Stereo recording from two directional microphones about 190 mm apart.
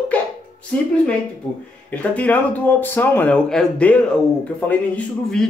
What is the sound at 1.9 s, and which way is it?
Speech, 5° left (ahead or behind).